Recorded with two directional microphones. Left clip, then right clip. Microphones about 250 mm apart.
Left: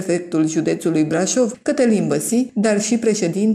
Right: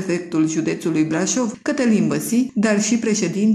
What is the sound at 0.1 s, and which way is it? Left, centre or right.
A woman's voice, centre.